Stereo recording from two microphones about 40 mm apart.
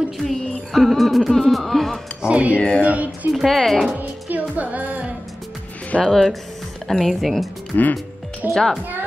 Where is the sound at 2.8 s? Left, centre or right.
Right.